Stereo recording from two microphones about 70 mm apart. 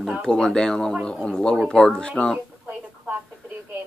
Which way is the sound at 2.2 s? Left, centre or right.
Centre.